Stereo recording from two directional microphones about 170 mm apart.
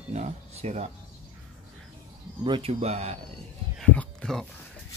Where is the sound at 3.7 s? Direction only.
5° left (ahead or behind).